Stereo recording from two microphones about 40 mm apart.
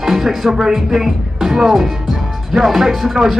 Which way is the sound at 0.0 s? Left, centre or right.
Centre.